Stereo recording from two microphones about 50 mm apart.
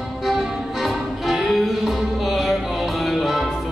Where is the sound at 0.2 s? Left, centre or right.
Centre.